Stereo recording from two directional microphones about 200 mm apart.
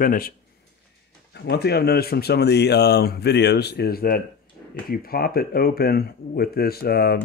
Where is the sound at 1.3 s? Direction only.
55° left (ahead or behind).